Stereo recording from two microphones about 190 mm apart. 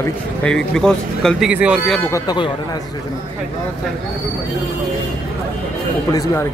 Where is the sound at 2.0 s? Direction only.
20° left (ahead or behind).